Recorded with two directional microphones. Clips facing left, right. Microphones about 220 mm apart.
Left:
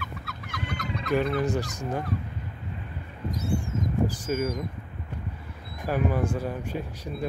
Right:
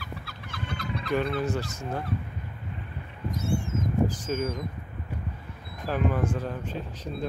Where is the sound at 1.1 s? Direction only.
15° left (ahead or behind).